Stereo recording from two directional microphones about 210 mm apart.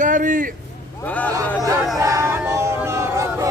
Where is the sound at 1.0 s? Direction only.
5° left (ahead or behind).